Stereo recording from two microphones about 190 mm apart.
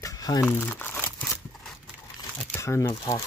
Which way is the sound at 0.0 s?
20° left (ahead or behind).